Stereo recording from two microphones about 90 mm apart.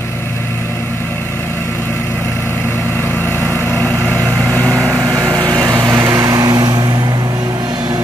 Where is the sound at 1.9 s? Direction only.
20° left (ahead or behind).